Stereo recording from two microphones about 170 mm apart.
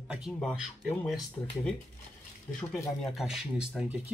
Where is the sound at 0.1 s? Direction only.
Centre (ahead or behind).